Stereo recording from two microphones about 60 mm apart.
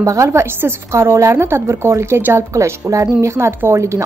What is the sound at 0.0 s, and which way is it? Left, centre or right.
A woman's voice, right.